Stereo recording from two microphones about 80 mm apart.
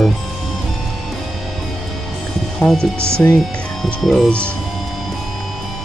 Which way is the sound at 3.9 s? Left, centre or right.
Centre.